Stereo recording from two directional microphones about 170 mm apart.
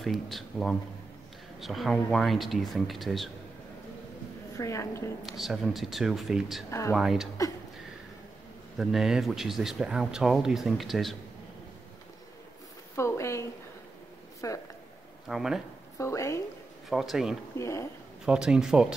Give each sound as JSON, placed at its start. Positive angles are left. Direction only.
{"t": 0.0, "sound": "speech", "side_deg": 0}
{"t": 4.6, "sound": "a woman's voice", "side_deg": 20}
{"t": 5.2, "sound": "speech", "side_deg": 0}
{"t": 6.7, "sound": "a woman's voice", "side_deg": 15}
{"t": 7.0, "sound": "speech", "side_deg": 0}
{"t": 8.7, "sound": "speech", "side_deg": 0}
{"t": 12.9, "sound": "a woman's voice", "side_deg": 15}
{"t": 15.2, "sound": "speech", "side_deg": 0}
{"t": 16.0, "sound": "a woman's voice", "side_deg": 15}
{"t": 16.9, "sound": "speech", "side_deg": 0}
{"t": 17.6, "sound": "a woman's voice", "side_deg": 15}
{"t": 18.2, "sound": "speech", "side_deg": -5}